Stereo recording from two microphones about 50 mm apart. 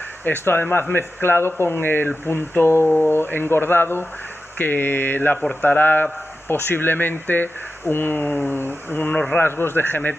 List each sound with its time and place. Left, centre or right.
0.5 s speech: left